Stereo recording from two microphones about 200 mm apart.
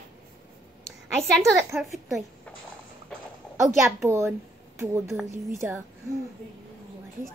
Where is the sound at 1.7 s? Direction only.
Centre (ahead or behind).